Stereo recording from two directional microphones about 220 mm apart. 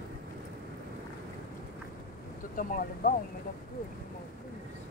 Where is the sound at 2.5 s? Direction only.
40° left (ahead or behind).